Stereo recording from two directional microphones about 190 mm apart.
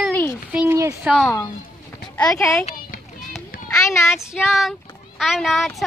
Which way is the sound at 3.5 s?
50° left (ahead or behind).